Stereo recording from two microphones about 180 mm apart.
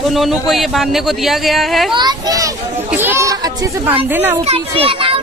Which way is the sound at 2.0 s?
20° right (ahead or behind).